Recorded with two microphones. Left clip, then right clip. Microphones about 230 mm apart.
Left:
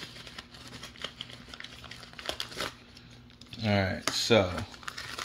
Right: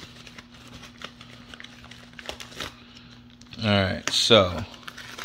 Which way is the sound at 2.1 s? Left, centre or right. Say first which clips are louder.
Left 1 dB; centre.